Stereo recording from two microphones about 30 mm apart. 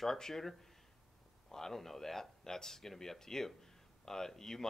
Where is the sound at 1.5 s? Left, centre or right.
Centre.